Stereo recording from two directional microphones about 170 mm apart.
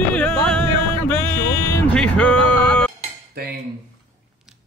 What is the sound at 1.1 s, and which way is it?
Music, 10° left (ahead or behind).